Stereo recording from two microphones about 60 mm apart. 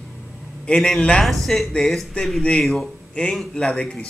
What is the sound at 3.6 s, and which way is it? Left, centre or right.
Speech, centre.